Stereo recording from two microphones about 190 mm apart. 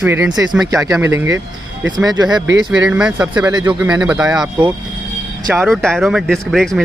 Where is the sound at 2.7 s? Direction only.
5° right (ahead or behind).